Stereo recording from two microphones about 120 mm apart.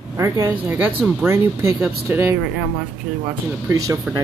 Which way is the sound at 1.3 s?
25° right (ahead or behind).